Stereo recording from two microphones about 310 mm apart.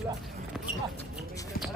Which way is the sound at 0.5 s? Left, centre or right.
Centre.